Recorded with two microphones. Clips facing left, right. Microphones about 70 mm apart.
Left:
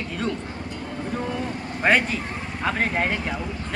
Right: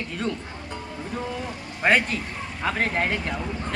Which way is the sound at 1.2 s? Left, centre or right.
Left.